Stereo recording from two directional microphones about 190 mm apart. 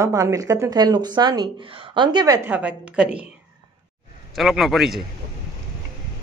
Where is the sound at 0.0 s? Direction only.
15° right (ahead or behind).